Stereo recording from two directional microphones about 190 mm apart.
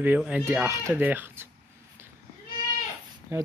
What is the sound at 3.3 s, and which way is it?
Speech, 10° right (ahead or behind).